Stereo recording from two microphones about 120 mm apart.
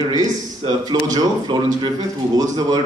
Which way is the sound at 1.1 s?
40° right (ahead or behind).